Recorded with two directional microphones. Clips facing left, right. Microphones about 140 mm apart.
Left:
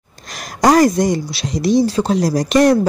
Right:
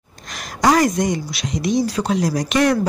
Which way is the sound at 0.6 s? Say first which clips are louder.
Left 4 dB; 35° left (ahead or behind).